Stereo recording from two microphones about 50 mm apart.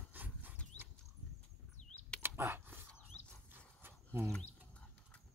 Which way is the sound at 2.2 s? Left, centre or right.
Right.